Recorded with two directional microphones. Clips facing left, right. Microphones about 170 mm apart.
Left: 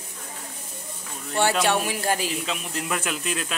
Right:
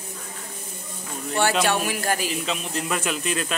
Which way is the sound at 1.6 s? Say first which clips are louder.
Even; 25° left (ahead or behind).